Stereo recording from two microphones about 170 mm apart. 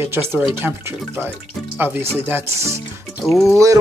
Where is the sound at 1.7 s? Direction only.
10° right (ahead or behind).